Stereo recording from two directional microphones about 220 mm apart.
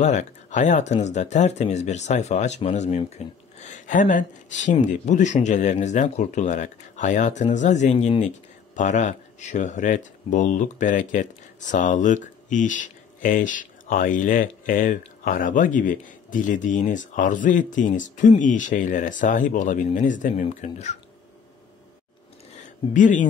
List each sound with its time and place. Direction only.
0.0 s speech: 35° left (ahead or behind)
22.6 s speech: 35° left (ahead or behind)